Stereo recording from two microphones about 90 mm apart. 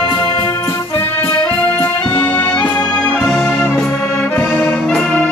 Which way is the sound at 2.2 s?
20° left (ahead or behind).